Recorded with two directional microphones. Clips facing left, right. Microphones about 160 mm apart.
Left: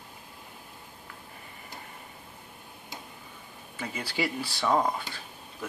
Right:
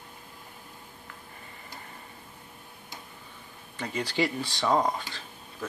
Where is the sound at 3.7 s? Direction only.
5° left (ahead or behind).